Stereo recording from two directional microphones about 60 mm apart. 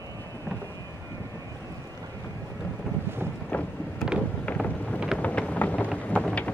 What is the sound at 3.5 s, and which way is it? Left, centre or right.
Boat, left.